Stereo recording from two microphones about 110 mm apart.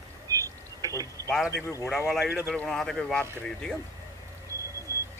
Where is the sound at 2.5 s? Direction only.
5° left (ahead or behind).